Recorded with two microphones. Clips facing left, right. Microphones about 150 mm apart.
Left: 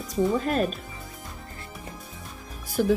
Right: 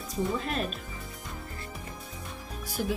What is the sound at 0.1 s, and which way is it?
Speech, 40° left (ahead or behind).